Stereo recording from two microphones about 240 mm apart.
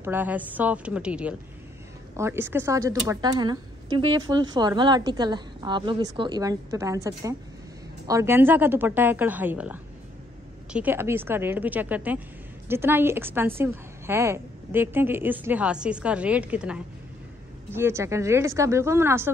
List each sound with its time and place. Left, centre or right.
0.0 s speech: centre